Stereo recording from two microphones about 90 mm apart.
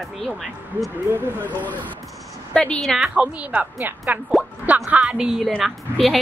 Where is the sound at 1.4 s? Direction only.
20° left (ahead or behind).